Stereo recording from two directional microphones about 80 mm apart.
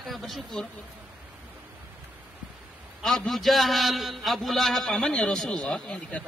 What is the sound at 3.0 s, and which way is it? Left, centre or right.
A man's voice, centre.